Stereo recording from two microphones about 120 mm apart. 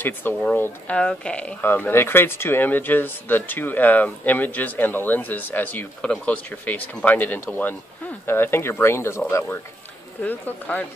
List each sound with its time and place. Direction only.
0.0 s speech: 15° left (ahead or behind)